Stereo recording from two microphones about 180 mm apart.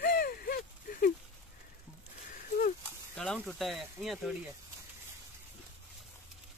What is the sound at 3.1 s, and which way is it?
Speech, 5° left (ahead or behind).